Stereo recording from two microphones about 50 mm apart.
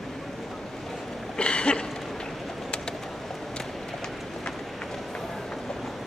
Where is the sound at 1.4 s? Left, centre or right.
Centre.